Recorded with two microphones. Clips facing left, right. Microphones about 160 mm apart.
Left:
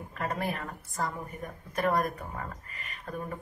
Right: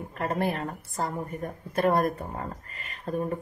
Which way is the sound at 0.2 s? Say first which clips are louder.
Right 5 dB; 30° right (ahead or behind).